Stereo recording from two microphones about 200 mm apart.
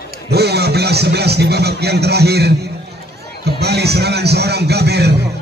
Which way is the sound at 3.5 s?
55° right (ahead or behind).